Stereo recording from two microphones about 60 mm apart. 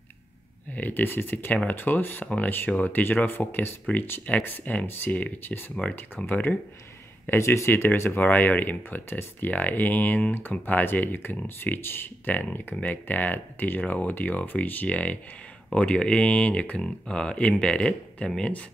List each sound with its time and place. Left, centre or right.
0.7 s speech: left
5.8 s speech: centre
6.2 s speech: left
7.2 s speech: left; by 18.5 s centre